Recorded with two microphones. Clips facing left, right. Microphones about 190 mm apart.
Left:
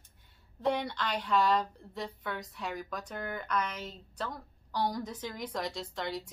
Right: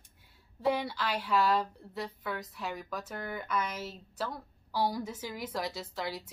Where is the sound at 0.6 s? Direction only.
5° right (ahead or behind).